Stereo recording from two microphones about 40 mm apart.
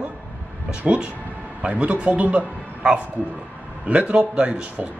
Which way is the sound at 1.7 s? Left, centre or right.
Right.